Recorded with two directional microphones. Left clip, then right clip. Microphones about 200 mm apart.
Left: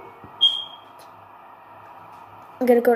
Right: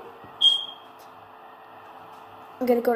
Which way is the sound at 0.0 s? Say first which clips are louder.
Left 1 dB; 30° right (ahead or behind).